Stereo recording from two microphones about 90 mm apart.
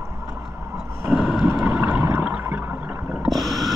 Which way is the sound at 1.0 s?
5° right (ahead or behind).